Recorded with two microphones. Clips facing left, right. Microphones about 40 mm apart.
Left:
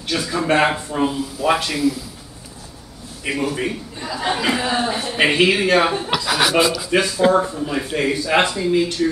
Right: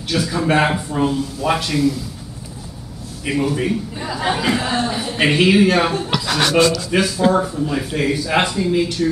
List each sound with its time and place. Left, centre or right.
0.1 s speech: centre
3.3 s speech: centre